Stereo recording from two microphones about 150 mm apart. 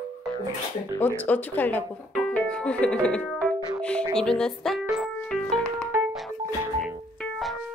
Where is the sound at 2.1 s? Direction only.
5° left (ahead or behind).